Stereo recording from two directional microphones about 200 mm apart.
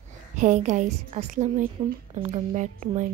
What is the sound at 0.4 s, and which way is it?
Speech, 35° right (ahead or behind).